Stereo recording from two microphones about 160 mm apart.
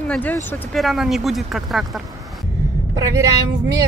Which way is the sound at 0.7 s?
Centre (ahead or behind).